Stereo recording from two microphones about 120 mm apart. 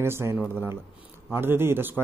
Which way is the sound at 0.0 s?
20° right (ahead or behind).